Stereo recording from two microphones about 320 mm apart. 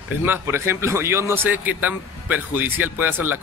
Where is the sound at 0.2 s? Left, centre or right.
Centre.